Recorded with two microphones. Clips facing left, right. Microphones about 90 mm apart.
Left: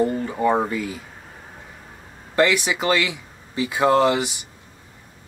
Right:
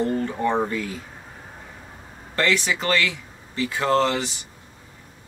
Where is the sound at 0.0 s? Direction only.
5° left (ahead or behind).